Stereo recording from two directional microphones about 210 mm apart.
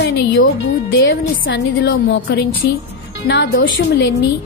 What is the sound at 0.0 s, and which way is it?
A woman's voice, 55° left (ahead or behind).